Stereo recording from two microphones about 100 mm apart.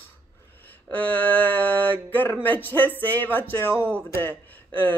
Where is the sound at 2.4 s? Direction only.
20° left (ahead or behind).